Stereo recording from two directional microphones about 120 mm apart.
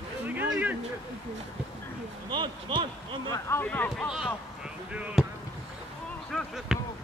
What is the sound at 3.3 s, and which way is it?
Speech, 20° left (ahead or behind).